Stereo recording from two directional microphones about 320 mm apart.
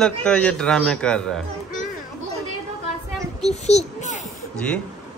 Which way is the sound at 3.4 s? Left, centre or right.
Centre.